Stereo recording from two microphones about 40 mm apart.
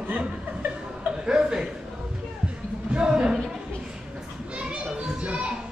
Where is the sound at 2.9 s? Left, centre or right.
Right.